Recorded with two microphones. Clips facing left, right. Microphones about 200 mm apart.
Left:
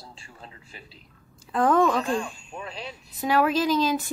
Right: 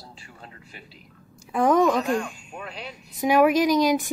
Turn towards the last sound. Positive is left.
turn(degrees=-15)  # may be behind; listen again after turning